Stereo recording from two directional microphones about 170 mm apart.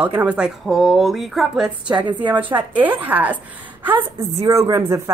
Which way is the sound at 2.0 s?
25° right (ahead or behind).